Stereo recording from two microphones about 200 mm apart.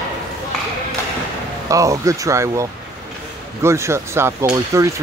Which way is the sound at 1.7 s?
15° right (ahead or behind).